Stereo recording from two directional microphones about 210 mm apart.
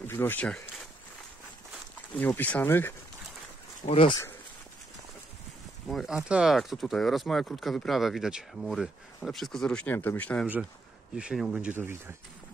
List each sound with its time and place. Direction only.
0.0 s speech: 10° left (ahead or behind)
2.0 s speech: 10° left (ahead or behind)
3.8 s speech: 25° left (ahead or behind)
5.9 s speech: centre (ahead or behind)
10.4 s speech: 5° right (ahead or behind)